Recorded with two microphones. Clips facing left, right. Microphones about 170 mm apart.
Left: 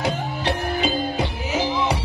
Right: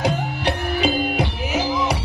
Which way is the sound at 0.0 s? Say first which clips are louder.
Right 2 dB; 15° right (ahead or behind).